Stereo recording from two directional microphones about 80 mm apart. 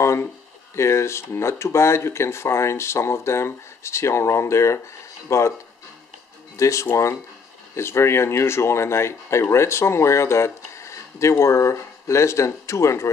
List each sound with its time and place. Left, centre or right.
0.0 s a sound: left
0.7 s speech: left
6.5 s speech: left